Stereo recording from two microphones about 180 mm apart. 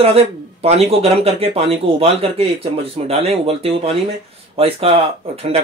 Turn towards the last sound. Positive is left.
turn(degrees=-35)  # may be behind; listen again after turning